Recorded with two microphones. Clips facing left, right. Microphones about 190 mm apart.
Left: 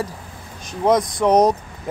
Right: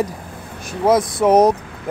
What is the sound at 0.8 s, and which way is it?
Speech, 5° right (ahead or behind).